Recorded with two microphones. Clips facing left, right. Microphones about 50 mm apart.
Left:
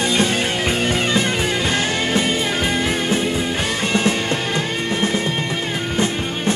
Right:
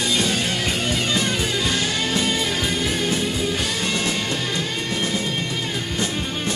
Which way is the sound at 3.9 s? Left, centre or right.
Left.